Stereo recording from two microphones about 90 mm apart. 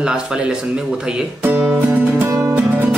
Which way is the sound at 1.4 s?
20° right (ahead or behind).